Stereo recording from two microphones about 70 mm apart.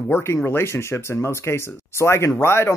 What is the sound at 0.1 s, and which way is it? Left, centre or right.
Speech, left.